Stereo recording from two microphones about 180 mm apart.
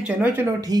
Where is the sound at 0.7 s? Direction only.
20° right (ahead or behind).